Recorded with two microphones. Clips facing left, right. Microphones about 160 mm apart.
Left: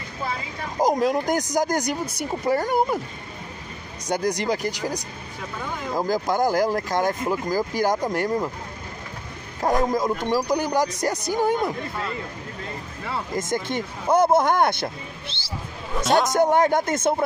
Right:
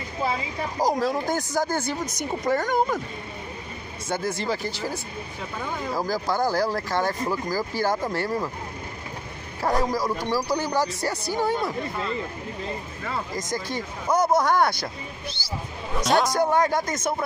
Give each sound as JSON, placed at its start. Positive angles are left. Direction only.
{"t": 0.7, "sound": "speech", "side_deg": 20}
{"t": 4.1, "sound": "speech", "side_deg": 40}
{"t": 4.4, "sound": "speech", "side_deg": 15}
{"t": 5.9, "sound": "speech", "side_deg": 20}
{"t": 9.6, "sound": "speech", "side_deg": 20}
{"t": 13.4, "sound": "speech", "side_deg": 25}
{"t": 16.0, "sound": "a man's voice", "side_deg": 0}
{"t": 16.3, "sound": "speech", "side_deg": 20}